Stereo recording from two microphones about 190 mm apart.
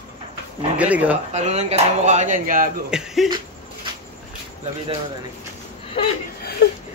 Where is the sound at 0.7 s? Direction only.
5° right (ahead or behind).